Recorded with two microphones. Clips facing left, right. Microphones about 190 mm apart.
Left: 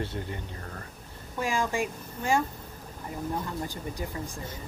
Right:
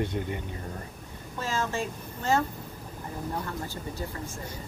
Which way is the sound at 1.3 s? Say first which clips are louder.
Left 2 dB; 15° left (ahead or behind).